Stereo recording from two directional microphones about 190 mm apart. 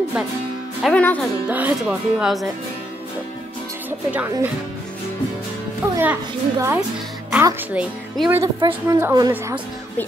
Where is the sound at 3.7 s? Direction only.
10° right (ahead or behind).